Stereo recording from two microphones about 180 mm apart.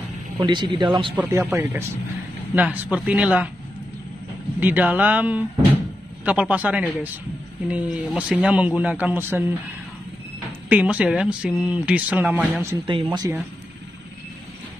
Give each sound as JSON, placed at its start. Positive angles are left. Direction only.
{"t": 0.4, "sound": "speech", "side_deg": -25}
{"t": 1.5, "sound": "speech", "side_deg": -15}
{"t": 4.6, "sound": "speech", "side_deg": -10}
{"t": 10.7, "sound": "speech", "side_deg": -10}
{"t": 12.8, "sound": "speech", "side_deg": -25}